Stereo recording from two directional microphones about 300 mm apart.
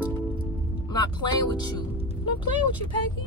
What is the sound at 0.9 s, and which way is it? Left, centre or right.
Music, centre.